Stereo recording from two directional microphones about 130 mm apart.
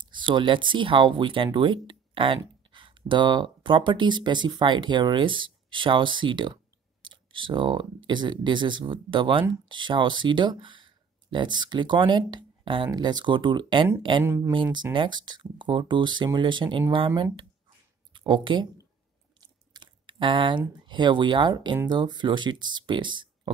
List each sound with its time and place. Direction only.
0.0 s speech: 35° right (ahead or behind)
14.2 s speech: 20° right (ahead or behind)
14.5 s speech: 35° right (ahead or behind)
19.7 s a sound: 35° right (ahead or behind)
20.8 s speech: 35° right (ahead or behind)